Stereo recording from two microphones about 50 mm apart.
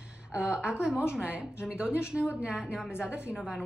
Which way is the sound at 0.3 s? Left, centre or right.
Centre.